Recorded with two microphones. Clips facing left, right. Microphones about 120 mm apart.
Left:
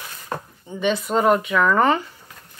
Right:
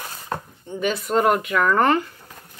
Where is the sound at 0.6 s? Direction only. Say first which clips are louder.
Left 3 dB; centre (ahead or behind).